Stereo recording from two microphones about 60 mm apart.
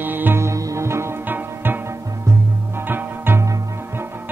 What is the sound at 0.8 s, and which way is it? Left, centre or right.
Music, right.